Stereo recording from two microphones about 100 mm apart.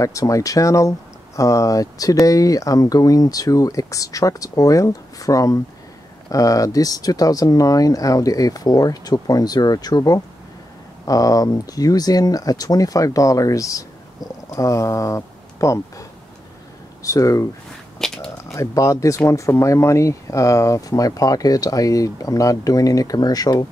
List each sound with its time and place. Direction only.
0.0 s speech: 35° left (ahead or behind)
17.9 s a sound: 5° left (ahead or behind)
18.4 s speech: 30° left (ahead or behind)